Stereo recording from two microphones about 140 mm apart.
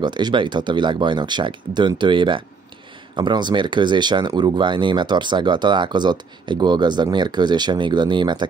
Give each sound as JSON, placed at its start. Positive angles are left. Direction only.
{"t": 0.0, "sound": "speech", "side_deg": -35}